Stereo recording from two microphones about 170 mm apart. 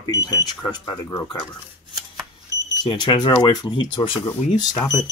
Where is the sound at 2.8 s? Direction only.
25° left (ahead or behind).